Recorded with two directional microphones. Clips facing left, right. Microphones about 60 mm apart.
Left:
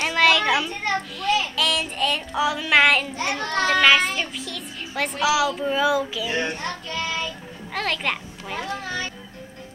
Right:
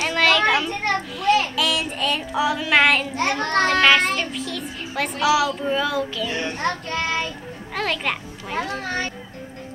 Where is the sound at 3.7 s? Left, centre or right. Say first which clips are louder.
Left 1 dB; centre.